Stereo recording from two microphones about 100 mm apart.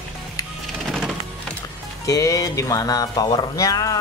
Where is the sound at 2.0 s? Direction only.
35° left (ahead or behind).